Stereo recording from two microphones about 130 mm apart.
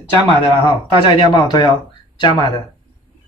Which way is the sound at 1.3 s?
35° left (ahead or behind).